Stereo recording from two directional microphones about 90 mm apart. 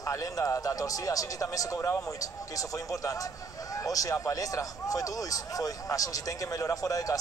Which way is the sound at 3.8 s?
40° left (ahead or behind).